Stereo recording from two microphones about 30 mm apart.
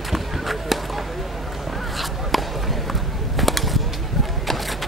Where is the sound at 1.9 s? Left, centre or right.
Centre.